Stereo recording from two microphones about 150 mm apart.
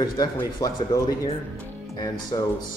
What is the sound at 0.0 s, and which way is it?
Speech, 25° left (ahead or behind).